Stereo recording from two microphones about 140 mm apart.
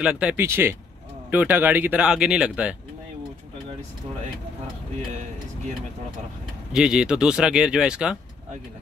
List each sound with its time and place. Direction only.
0.0 s speech: 10° right (ahead or behind)
6.7 s speech: 5° right (ahead or behind)